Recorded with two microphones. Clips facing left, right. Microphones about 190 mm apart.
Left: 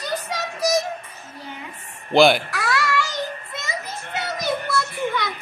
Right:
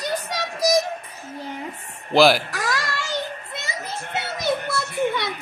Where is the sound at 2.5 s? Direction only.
40° right (ahead or behind).